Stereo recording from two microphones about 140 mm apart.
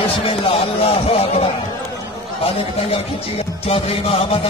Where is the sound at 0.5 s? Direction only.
45° left (ahead or behind).